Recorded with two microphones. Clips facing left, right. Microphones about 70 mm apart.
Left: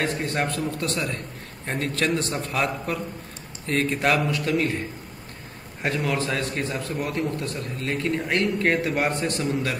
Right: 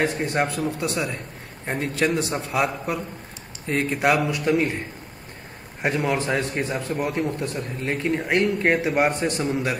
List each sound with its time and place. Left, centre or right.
0.0 s a man's voice: centre